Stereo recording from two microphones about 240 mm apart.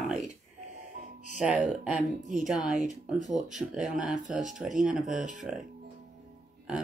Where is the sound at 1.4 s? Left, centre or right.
Centre.